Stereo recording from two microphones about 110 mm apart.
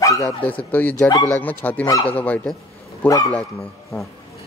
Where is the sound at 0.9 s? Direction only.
35° left (ahead or behind).